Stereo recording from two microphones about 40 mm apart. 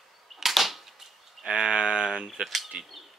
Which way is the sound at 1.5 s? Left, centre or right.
Centre.